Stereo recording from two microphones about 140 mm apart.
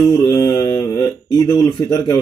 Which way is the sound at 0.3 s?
20° left (ahead or behind).